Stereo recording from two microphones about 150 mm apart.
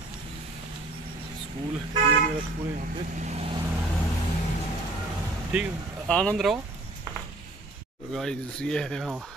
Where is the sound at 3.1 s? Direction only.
50° right (ahead or behind).